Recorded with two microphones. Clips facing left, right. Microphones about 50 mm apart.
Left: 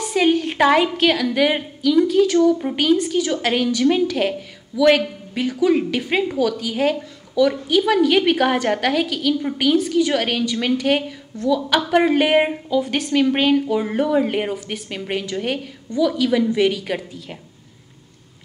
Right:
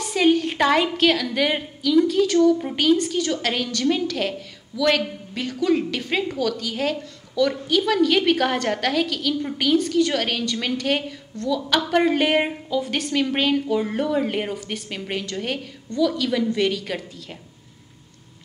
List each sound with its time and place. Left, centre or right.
0.0 s a woman's voice: centre